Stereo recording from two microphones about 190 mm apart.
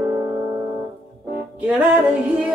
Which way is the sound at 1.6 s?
5° right (ahead or behind).